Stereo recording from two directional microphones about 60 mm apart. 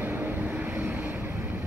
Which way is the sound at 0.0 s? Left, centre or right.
Right.